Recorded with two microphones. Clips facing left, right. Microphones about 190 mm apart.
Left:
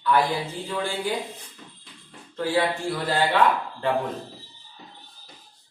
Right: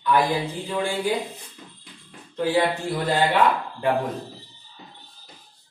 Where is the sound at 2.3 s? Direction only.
20° right (ahead or behind).